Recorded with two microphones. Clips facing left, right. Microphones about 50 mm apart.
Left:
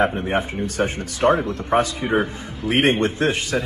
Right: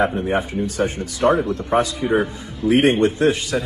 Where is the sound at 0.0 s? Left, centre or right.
Left.